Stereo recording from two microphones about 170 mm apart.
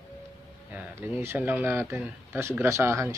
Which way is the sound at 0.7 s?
10° right (ahead or behind).